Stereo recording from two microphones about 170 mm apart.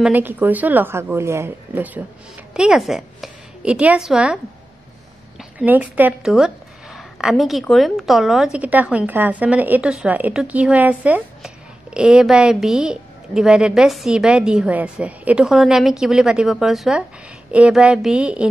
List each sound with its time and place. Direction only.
0.0 s a woman's voice: 10° right (ahead or behind)
5.4 s speech: 5° right (ahead or behind)